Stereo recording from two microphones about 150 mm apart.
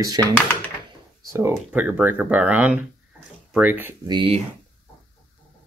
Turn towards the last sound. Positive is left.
turn(degrees=-35)  # may be behind; listen again after turning